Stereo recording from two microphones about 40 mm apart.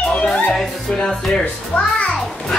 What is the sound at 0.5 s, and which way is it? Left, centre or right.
Speech, centre.